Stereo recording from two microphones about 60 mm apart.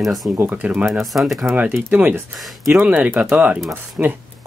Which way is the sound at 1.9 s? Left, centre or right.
Right.